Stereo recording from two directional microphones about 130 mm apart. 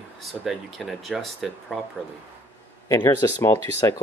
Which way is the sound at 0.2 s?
Centre (ahead or behind).